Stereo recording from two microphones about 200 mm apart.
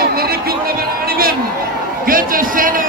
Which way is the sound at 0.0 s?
50° right (ahead or behind).